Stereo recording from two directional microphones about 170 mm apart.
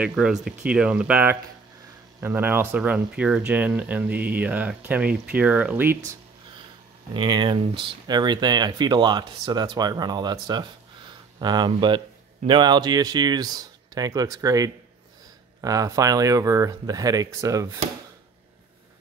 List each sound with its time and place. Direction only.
0.0 s speech: 5° right (ahead or behind)
7.2 s speech: 25° right (ahead or behind)